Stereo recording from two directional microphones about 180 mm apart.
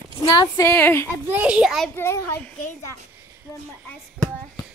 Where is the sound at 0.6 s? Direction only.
10° left (ahead or behind).